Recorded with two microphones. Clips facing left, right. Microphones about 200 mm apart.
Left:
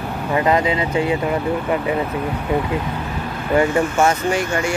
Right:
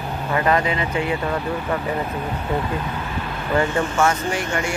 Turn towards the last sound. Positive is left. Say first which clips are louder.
# left 4 dB
turn(degrees=25)  # may be behind; listen again after turning